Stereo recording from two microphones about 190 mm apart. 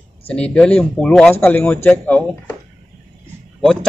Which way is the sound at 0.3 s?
5° left (ahead or behind).